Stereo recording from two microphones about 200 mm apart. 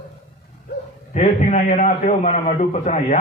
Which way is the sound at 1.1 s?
35° left (ahead or behind).